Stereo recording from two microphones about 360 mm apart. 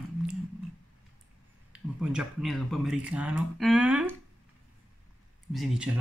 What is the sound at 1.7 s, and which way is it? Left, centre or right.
Speech, centre.